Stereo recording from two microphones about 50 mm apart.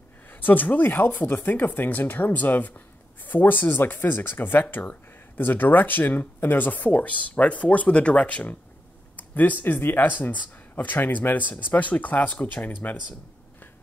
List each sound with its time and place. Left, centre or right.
0.3 s speech: left